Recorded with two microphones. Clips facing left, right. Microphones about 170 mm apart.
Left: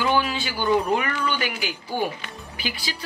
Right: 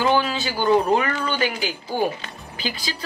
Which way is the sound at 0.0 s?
40° right (ahead or behind).